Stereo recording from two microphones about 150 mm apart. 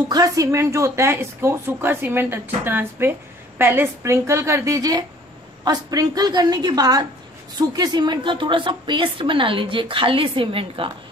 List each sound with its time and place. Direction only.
0.1 s a woman's voice: 25° right (ahead or behind)